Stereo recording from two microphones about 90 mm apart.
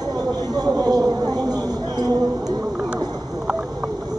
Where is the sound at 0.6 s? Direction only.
45° right (ahead or behind).